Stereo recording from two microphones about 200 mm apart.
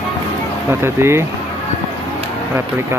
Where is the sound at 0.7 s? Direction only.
10° right (ahead or behind).